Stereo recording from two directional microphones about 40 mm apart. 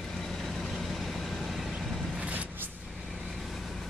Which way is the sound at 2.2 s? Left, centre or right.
Right.